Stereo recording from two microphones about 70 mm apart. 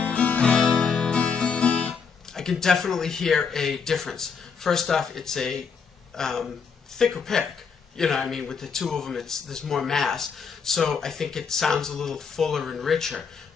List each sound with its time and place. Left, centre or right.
0.0 s music: centre
2.3 s a sound: centre
2.6 s speech: centre